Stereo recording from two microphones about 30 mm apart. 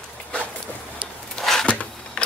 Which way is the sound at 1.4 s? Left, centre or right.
Centre.